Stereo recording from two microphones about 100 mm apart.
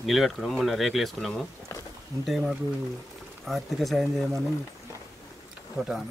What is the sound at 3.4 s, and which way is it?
Speech, centre (ahead or behind).